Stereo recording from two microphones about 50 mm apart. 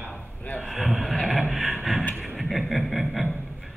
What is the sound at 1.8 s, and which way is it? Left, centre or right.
Beatboxing, centre.